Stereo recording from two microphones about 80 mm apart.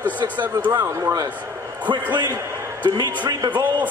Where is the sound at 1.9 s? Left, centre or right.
Right.